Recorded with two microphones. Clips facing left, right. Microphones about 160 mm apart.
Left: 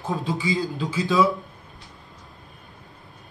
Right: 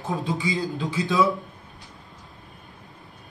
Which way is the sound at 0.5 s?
Centre (ahead or behind).